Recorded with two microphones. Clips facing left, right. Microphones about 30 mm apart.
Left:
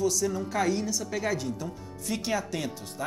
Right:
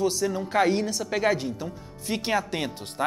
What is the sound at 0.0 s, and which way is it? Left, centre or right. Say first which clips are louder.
A woman's voice: right 2 dB; right.